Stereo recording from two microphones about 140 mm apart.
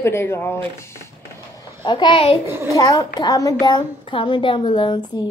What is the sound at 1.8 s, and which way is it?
Speech, 35° left (ahead or behind).